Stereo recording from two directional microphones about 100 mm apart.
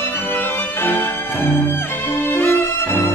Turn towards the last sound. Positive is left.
turn(degrees=25)  # may be behind; listen again after turning